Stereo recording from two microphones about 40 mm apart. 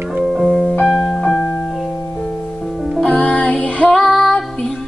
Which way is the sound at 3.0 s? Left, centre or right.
Centre.